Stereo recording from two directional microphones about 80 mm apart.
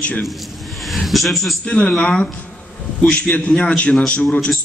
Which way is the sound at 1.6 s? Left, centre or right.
Centre.